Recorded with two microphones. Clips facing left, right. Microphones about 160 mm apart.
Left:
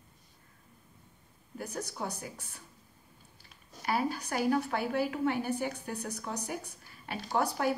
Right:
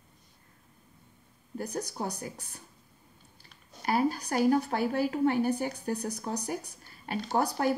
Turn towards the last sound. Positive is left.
turn(degrees=-40)  # may be behind; listen again after turning